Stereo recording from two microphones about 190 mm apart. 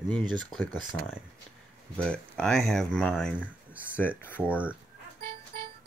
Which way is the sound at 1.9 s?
5° left (ahead or behind).